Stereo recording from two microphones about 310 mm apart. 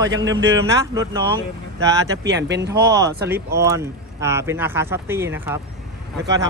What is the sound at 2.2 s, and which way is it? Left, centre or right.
Speech, right.